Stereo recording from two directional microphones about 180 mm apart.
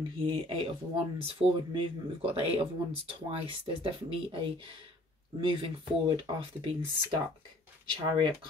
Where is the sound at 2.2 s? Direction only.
30° right (ahead or behind).